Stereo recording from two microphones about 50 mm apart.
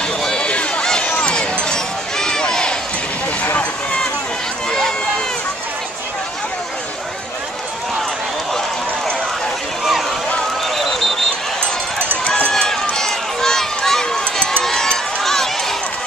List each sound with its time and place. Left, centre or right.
0.2 s run: centre
0.5 s run: left
4.6 s run: centre
12.4 s run: centre